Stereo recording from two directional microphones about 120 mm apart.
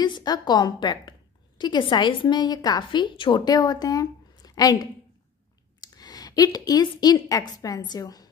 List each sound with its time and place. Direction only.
0.0 s a woman's voice: 35° left (ahead or behind)
5.8 s a sound: 35° left (ahead or behind)
6.9 s a woman's voice: 35° left (ahead or behind)